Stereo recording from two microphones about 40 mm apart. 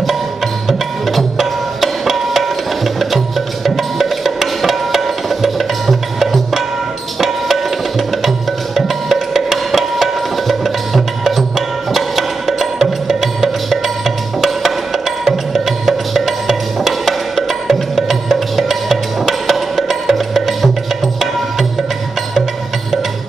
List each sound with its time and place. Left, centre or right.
0.7 s music: centre
8.7 s music: centre